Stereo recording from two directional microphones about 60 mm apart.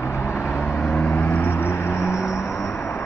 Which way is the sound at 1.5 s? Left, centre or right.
Left.